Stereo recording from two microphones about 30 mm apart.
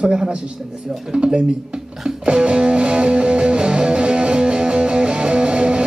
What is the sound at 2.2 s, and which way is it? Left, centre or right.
Music, right.